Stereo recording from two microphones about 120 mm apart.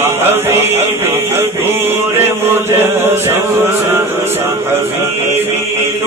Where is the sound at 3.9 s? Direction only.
20° right (ahead or behind).